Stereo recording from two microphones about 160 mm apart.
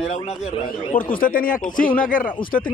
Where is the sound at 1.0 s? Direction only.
60° left (ahead or behind).